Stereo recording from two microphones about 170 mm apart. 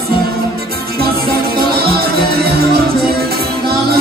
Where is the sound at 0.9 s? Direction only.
65° right (ahead or behind).